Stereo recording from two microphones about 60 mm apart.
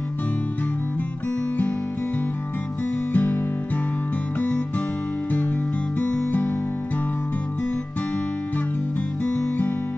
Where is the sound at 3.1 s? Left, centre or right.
Left.